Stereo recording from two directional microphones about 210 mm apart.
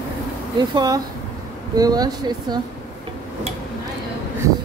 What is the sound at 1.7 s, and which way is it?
Speech, 20° right (ahead or behind).